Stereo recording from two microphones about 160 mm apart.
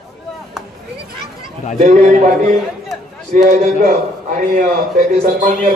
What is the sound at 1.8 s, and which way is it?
A man's voice, 50° right (ahead or behind).